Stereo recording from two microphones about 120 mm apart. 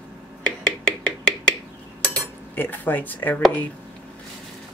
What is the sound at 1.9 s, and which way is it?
Dishes, 10° left (ahead or behind).